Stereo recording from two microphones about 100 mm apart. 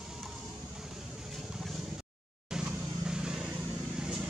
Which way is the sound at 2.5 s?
5° right (ahead or behind).